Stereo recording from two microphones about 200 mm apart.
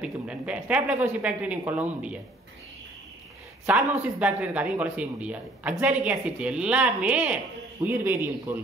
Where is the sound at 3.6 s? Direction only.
5° right (ahead or behind).